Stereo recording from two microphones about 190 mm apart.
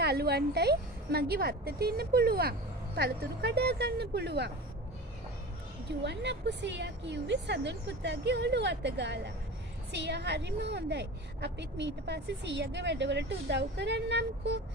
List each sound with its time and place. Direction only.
0.0 s a woman's voice: 55° right (ahead or behind)
5.9 s a woman's voice: 65° right (ahead or behind)